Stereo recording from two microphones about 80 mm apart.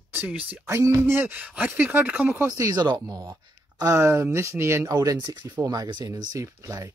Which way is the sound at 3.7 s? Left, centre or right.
Right.